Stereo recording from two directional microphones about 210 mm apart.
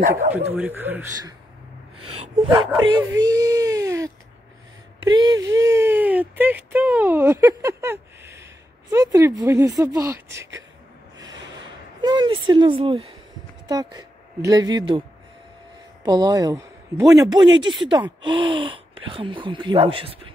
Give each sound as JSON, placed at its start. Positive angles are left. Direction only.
{"t": 0.5, "sound": "speech", "side_deg": -10}
{"t": 2.1, "sound": "speech", "side_deg": -30}
{"t": 3.0, "sound": "speech", "side_deg": -15}
{"t": 12.0, "sound": "a woman's voice", "side_deg": -20}